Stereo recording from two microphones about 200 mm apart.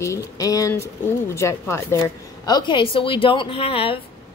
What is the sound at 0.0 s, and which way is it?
Speech, 15° left (ahead or behind).